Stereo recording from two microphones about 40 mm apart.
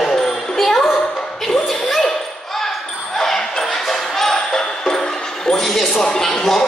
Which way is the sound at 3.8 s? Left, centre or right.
Centre.